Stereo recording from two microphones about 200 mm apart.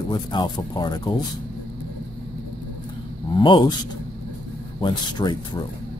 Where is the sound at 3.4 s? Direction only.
25° left (ahead or behind).